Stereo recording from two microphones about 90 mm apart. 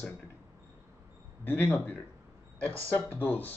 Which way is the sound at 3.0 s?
25° left (ahead or behind).